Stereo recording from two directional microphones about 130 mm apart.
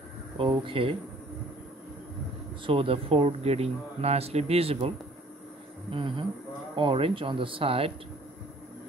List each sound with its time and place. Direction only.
0.4 s speech: 40° right (ahead or behind)
2.6 s speech: 45° right (ahead or behind)